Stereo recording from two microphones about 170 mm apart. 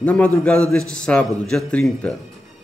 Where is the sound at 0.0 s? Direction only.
10° left (ahead or behind).